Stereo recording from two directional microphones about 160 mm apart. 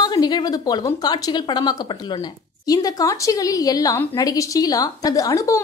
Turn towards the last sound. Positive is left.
turn(degrees=20)  # may be behind; listen again after turning